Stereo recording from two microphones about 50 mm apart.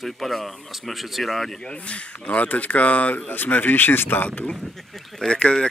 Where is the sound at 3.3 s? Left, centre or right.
Left.